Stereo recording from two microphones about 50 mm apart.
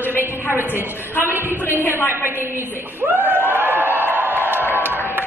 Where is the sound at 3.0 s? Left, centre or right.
Right.